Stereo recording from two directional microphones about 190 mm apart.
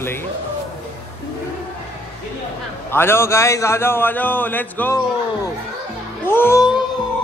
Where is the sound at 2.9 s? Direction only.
10° left (ahead or behind).